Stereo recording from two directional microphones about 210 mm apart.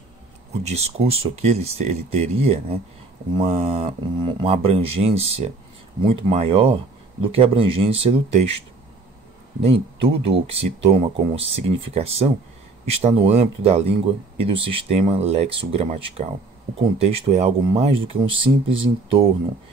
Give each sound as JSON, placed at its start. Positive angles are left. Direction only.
{"t": 0.7, "sound": "speech", "side_deg": -30}
{"t": 9.6, "sound": "speech", "side_deg": -25}